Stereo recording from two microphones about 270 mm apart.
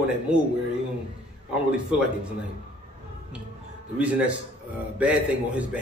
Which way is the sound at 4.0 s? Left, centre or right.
Centre.